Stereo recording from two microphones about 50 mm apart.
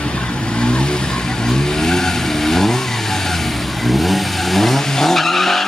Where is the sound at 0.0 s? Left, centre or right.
Centre.